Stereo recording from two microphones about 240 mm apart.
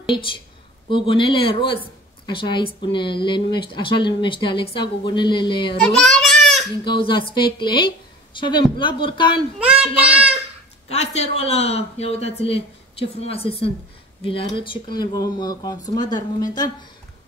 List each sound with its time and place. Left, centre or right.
0.1 s a woman's voice: left
5.9 s child singing: centre
6.8 s a woman's voice: centre
9.6 s child singing: centre
10.9 s a woman's voice: left